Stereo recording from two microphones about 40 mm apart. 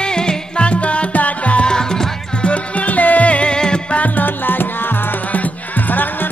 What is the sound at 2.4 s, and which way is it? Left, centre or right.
Music, left.